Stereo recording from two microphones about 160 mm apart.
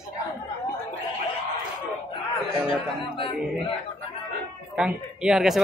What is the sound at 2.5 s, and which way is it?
Speech, 35° left (ahead or behind).